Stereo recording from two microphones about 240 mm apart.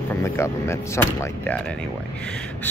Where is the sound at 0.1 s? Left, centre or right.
Centre.